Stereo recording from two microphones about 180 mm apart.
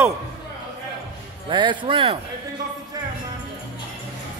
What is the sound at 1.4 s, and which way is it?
Speech, 25° right (ahead or behind).